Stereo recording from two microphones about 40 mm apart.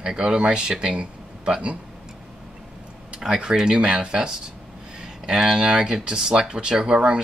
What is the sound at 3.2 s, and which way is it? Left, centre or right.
Speech, centre.